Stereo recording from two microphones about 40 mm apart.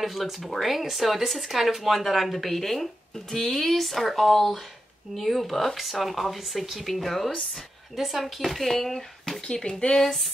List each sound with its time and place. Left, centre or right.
0.0 s speech: centre
9.5 s speech: centre
9.9 s speech: centre